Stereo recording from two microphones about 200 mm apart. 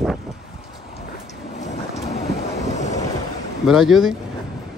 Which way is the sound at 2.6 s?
35° left (ahead or behind).